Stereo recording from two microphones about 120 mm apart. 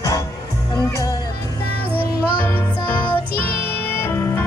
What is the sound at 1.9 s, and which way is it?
Music, 15° left (ahead or behind).